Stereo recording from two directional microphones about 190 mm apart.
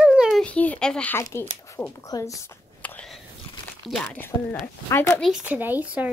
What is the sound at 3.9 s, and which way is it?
Speech, 5° left (ahead or behind).